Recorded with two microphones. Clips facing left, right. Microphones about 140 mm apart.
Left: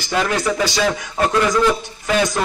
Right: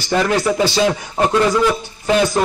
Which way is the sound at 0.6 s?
25° right (ahead or behind).